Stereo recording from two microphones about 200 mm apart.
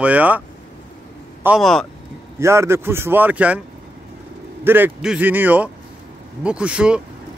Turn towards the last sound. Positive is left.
turn(degrees=-5)  # may be behind; listen again after turning